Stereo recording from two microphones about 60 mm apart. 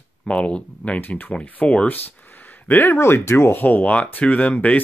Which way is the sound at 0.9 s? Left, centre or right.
Left.